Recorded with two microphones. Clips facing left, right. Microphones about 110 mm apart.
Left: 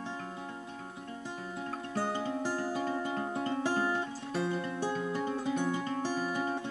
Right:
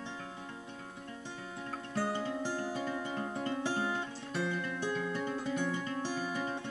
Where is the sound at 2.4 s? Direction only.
45° left (ahead or behind).